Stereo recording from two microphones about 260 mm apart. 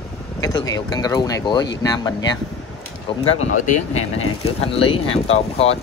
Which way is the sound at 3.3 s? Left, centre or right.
Left.